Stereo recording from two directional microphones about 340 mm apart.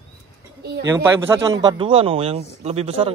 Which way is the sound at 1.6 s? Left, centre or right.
Centre.